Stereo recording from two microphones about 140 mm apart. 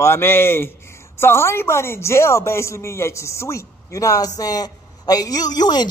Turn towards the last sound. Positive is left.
turn(degrees=30)  # may be behind; listen again after turning